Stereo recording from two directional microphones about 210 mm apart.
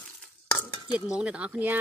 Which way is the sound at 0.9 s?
5° right (ahead or behind).